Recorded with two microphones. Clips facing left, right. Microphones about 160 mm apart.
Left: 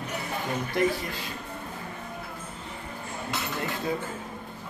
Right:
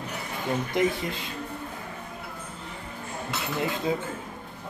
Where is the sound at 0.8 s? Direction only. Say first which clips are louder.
Even; 20° right (ahead or behind).